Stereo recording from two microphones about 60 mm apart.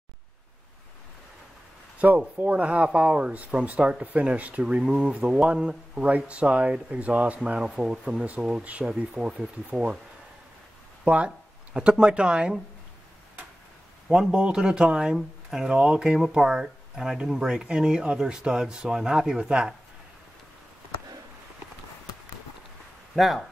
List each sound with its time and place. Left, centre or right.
2.0 s speech: right
11.1 s speech: centre
14.0 s a man's voice: centre
23.1 s speech: centre